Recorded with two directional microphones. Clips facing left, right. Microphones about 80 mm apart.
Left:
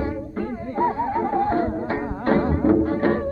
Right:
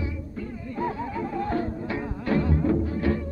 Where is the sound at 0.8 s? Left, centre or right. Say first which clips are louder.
Left 8 dB; left.